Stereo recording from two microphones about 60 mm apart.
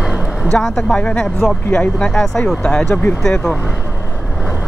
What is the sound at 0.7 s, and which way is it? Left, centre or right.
Speech, centre.